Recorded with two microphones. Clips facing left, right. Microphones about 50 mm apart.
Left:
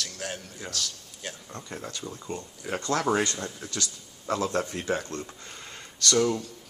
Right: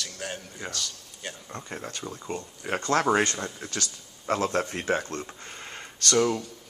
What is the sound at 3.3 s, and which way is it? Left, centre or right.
Speech, centre.